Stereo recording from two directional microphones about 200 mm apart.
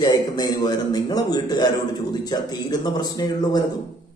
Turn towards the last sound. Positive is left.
turn(degrees=20)  # may be behind; listen again after turning